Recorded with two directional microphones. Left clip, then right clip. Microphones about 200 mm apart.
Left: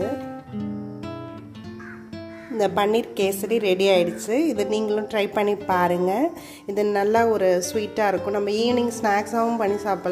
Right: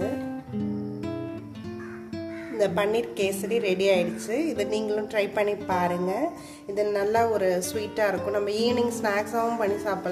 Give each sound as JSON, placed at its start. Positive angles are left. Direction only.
{"t": 0.0, "sound": "music", "side_deg": 0}
{"t": 2.5, "sound": "a woman's voice", "side_deg": 35}